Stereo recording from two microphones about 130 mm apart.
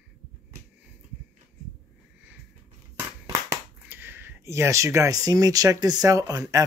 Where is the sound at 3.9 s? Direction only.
15° right (ahead or behind).